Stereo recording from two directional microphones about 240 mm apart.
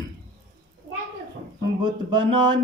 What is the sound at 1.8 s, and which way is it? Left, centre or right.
Music, centre.